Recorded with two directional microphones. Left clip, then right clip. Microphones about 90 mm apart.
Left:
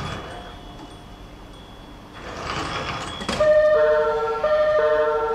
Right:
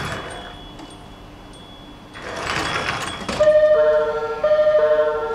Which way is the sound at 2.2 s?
30° right (ahead or behind).